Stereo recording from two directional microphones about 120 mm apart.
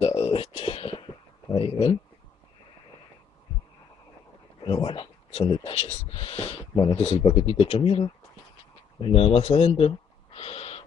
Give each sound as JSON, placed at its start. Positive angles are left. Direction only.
{"t": 0.0, "sound": "a sound", "side_deg": 55}
{"t": 4.6, "sound": "speech", "side_deg": 45}
{"t": 6.7, "sound": "speech", "side_deg": 35}
{"t": 7.0, "sound": "speech", "side_deg": 55}